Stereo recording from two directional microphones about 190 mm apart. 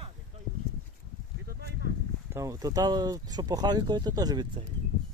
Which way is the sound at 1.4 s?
55° right (ahead or behind).